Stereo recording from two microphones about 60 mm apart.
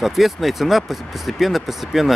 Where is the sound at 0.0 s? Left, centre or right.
Centre.